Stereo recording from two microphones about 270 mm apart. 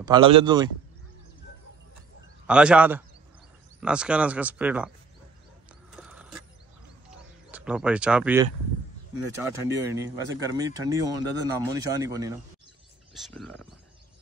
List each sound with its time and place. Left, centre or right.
0.0 s speech: centre
2.4 s speech: centre
5.9 s a sound: centre
7.5 s speech: centre
9.7 s speech: centre
13.1 s speech: centre